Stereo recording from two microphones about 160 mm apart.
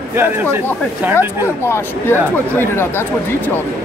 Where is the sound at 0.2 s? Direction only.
15° right (ahead or behind).